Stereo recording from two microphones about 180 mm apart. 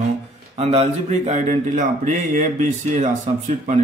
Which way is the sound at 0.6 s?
35° right (ahead or behind).